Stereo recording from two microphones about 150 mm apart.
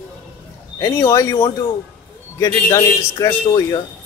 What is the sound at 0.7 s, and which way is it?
Speech, 25° left (ahead or behind).